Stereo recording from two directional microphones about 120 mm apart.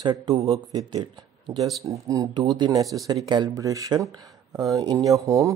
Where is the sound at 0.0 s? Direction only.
40° right (ahead or behind).